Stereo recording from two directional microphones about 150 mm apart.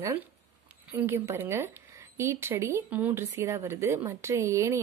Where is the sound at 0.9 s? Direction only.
15° right (ahead or behind).